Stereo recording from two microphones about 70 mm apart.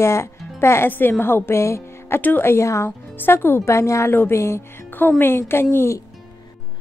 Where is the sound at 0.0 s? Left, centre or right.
Left.